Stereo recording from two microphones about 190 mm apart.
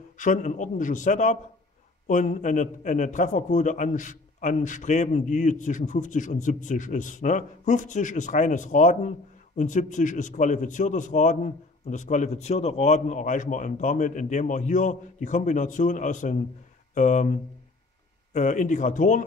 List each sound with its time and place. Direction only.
0.2 s a man's voice: 40° left (ahead or behind)